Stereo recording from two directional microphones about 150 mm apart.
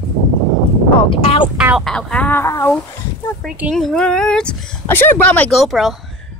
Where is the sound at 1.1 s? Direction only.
35° left (ahead or behind).